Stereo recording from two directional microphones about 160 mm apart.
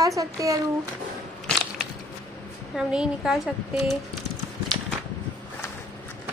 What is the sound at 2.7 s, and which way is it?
A woman's voice, 5° right (ahead or behind).